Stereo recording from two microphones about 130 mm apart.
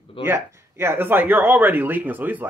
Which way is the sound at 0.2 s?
20° right (ahead or behind).